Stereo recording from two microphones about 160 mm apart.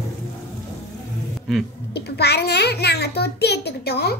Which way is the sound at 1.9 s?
90° left.